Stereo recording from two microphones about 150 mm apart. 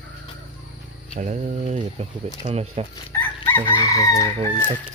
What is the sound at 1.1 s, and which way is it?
Speech, 55° right (ahead or behind).